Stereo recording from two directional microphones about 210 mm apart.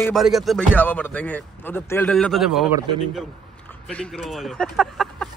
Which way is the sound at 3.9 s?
5° left (ahead or behind).